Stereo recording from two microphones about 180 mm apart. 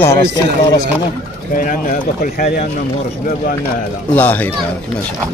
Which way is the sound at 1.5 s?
50° left (ahead or behind).